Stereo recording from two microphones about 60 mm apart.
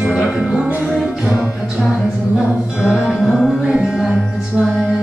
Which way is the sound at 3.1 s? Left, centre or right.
Centre.